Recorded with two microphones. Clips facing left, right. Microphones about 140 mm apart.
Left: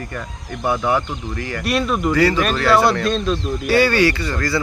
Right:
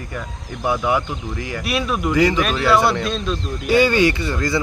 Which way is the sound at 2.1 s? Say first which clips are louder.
Even; 15° right (ahead or behind).